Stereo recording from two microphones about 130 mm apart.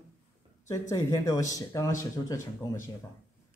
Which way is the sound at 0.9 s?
25° left (ahead or behind).